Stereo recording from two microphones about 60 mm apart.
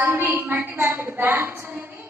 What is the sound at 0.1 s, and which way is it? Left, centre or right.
A woman's voice, right.